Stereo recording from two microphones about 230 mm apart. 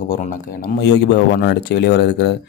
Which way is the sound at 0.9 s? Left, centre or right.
Left.